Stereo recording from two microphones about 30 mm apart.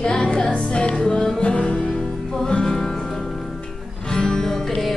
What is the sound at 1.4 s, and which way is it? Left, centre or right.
Music, left.